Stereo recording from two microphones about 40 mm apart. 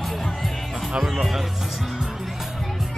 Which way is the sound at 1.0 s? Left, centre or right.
Centre.